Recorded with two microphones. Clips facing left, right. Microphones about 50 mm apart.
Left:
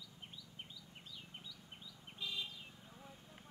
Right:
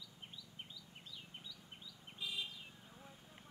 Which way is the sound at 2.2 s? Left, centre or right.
Centre.